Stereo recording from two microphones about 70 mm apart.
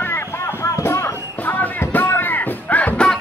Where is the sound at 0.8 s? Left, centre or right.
Left.